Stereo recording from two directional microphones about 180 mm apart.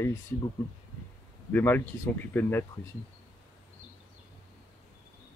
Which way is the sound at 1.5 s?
10° left (ahead or behind).